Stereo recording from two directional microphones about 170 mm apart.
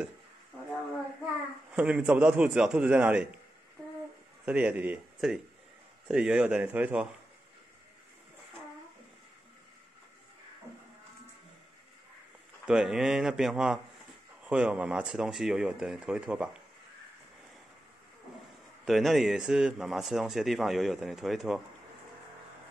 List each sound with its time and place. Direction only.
1.7 s a man's voice: 10° right (ahead or behind)
4.5 s a man's voice: 10° right (ahead or behind)
12.6 s a man's voice: 5° right (ahead or behind)
18.9 s a man's voice: centre (ahead or behind)